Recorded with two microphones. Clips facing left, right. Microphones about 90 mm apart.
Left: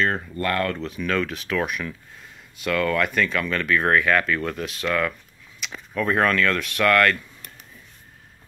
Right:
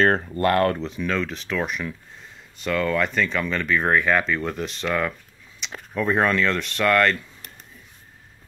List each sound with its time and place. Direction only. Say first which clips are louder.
0.0 s speech: right 4 dB; 50° right (ahead or behind)
0.4 s speech: right 4 dB; 30° right (ahead or behind)
0.8 s speech: left 1 dB; centre (ahead or behind)